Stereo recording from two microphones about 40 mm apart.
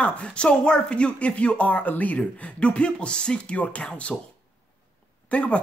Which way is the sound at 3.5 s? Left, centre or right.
Left.